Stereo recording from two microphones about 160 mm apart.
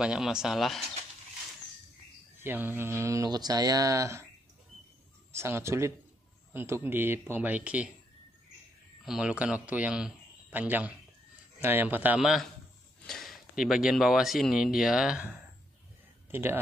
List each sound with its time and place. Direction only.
0.0 s speech: 5° right (ahead or behind)
2.4 s speech: 10° right (ahead or behind)
5.3 s speech: 15° right (ahead or behind)
9.0 s a man's voice: 5° right (ahead or behind)